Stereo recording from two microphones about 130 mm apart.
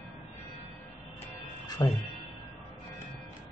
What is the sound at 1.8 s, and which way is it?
Speech, 30° left (ahead or behind).